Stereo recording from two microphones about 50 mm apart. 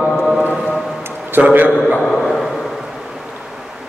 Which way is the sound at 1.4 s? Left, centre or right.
Right.